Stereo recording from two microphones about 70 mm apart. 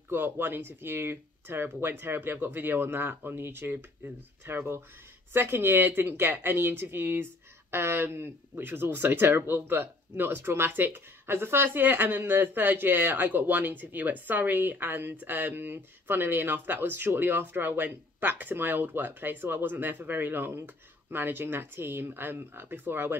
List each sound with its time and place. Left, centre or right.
0.1 s speech: right